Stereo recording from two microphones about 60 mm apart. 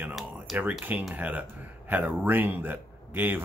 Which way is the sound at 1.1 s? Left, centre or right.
Right.